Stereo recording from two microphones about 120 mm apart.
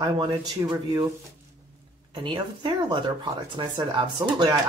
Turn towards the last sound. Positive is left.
turn(degrees=-40)  # may be behind; listen again after turning